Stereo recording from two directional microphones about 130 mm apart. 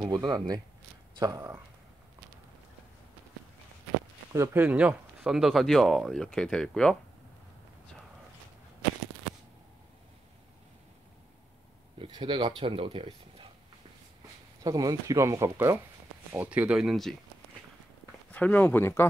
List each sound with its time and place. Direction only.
0.0 s speech: 30° right (ahead or behind)
1.1 s a sound: 30° right (ahead or behind)
4.3 s speech: 25° right (ahead or behind)
4.6 s speech: 10° right (ahead or behind)
12.0 s speech: 40° right (ahead or behind)
14.6 s speech: 30° right (ahead or behind)
16.3 s speech: 10° right (ahead or behind)
18.3 s speech: 10° left (ahead or behind)